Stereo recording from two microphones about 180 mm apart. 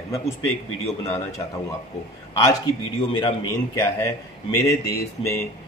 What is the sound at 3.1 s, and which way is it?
Speech, 25° left (ahead or behind).